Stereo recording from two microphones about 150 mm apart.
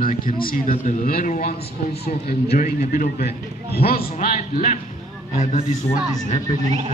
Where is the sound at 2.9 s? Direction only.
80° left; by 5.9 s 45° left (ahead or behind).